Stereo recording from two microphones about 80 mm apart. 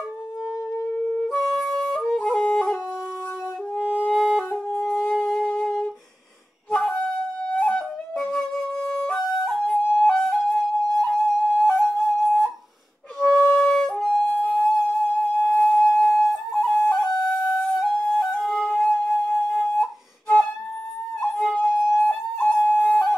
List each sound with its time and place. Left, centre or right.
1.3 s flute: centre
3.7 s music: centre
4.2 s flute: centre
5.0 s music: centre
6.7 s wind instrument: centre
7.5 s flute: centre
10.0 s music: centre
11.1 s flute: centre
13.2 s music: centre
13.9 s flute: centre
14.2 s music: centre
16.2 s flute: centre
22.4 s flute: centre